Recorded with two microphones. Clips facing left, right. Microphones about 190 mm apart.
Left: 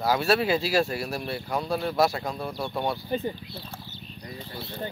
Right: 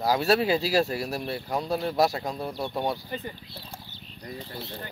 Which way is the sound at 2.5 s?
20° right (ahead or behind).